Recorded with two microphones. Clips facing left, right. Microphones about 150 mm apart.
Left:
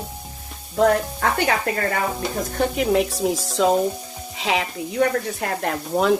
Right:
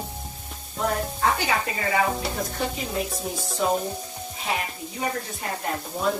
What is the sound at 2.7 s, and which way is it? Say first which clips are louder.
Stir: left 10 dB; 80° left.